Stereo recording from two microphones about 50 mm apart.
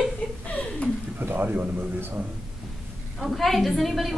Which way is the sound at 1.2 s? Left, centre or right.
Right.